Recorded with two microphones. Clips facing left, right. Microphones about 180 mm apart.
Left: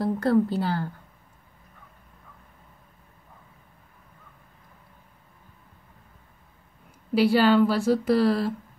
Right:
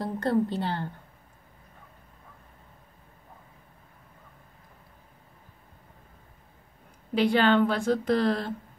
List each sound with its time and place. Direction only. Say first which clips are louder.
0.0 s a woman's voice: left 4 dB; centre (ahead or behind)
7.2 s a woman's voice: left 3 dB; 5° left (ahead or behind)